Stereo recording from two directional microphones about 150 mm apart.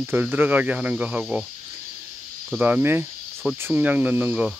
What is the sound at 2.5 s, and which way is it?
Speech, 10° right (ahead or behind).